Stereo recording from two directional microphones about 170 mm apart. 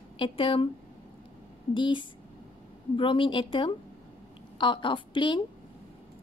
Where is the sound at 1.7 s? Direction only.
30° left (ahead or behind).